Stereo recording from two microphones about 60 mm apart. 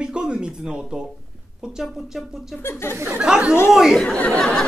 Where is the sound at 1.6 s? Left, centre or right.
Centre.